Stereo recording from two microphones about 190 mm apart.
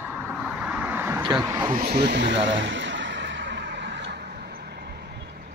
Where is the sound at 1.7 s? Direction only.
55° right (ahead or behind).